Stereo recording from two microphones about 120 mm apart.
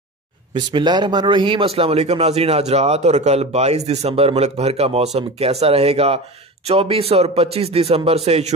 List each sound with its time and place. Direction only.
0.5 s a man's voice: 40° right (ahead or behind)
1.7 s a man's voice: 55° right (ahead or behind)